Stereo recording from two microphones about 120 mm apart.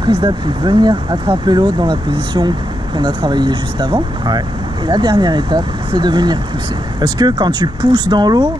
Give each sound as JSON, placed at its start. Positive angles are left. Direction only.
{"t": 0.0, "sound": "speech", "side_deg": -35}